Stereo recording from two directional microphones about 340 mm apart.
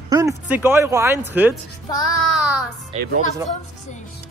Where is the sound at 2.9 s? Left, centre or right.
Centre.